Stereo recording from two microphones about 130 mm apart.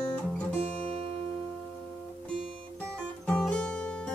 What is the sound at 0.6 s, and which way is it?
Music, 50° right (ahead or behind).